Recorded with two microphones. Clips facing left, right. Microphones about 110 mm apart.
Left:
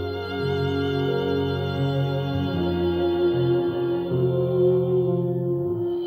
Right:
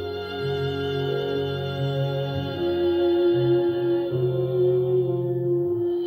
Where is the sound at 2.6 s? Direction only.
35° left (ahead or behind).